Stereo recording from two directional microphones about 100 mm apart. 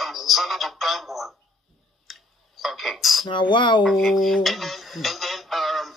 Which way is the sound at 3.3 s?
50° left (ahead or behind).